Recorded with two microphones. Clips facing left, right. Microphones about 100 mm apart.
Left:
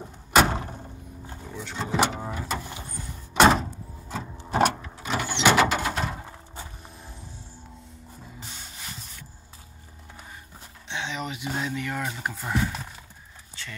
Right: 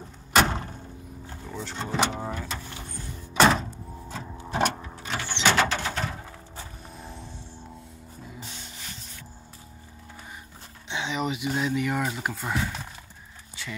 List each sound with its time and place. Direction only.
0.3 s a sound: 5° left (ahead or behind)
1.2 s vehicle: 15° left (ahead or behind)
1.6 s speech: 5° left (ahead or behind)
3.3 s door: 5° left (ahead or behind)
4.1 s printer: centre (ahead or behind)
5.1 s a sound: 10° left (ahead or behind)
7.0 s vehicle: centre (ahead or behind)
10.9 s speech: 5° right (ahead or behind)
13.6 s a sound: 5° right (ahead or behind)